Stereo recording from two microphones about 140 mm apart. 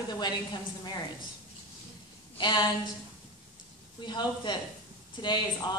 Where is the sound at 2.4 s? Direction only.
30° left (ahead or behind).